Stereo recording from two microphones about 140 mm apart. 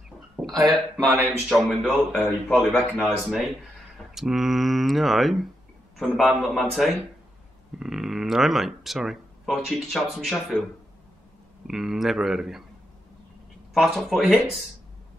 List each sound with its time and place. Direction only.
0.4 s speech: 5° right (ahead or behind)
0.9 s speech: 20° right (ahead or behind)
1.5 s speech: centre (ahead or behind)
11.6 s speech: 5° right (ahead or behind)
13.7 s speech: centre (ahead or behind)